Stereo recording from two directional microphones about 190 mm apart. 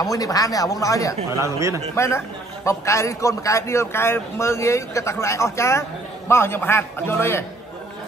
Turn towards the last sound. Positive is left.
turn(degrees=15)  # may be behind; listen again after turning